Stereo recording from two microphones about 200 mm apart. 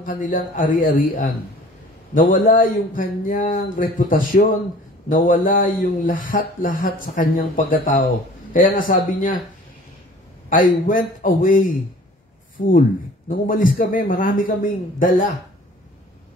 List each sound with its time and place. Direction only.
0.0 s a man's voice: 40° left (ahead or behind)
10.5 s a man's voice: 45° left (ahead or behind)
13.3 s a man's voice: 45° left (ahead or behind)